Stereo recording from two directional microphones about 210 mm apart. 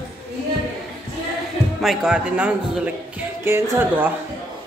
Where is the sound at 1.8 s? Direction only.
5° right (ahead or behind).